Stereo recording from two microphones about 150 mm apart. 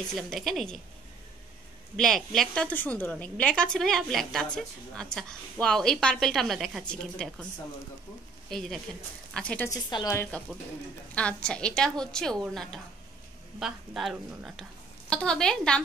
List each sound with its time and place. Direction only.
0.1 s a woman's voice: centre (ahead or behind)
2.0 s a woman's voice: centre (ahead or behind)
8.5 s a woman's voice: 5° left (ahead or behind)
9.7 s speech: 25° left (ahead or behind)
10.3 s a woman's voice: 10° left (ahead or behind)